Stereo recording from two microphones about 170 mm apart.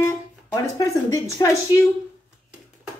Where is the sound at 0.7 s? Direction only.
20° left (ahead or behind).